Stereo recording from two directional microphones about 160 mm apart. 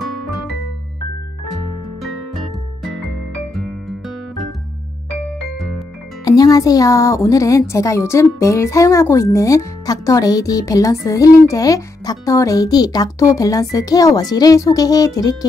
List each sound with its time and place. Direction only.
0.0 s music: centre (ahead or behind)
2.0 s music: centre (ahead or behind)
6.2 s speech: 25° left (ahead or behind)